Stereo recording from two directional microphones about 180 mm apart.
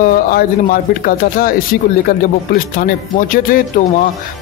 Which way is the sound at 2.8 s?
50° left (ahead or behind).